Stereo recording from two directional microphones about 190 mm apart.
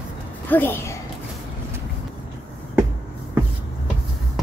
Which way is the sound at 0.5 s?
10° left (ahead or behind).